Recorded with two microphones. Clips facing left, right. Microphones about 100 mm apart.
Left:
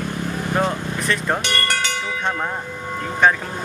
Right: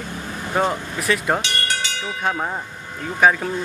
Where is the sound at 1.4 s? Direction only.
55° left (ahead or behind).